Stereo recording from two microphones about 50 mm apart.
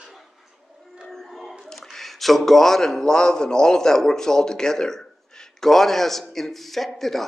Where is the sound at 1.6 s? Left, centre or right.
Centre.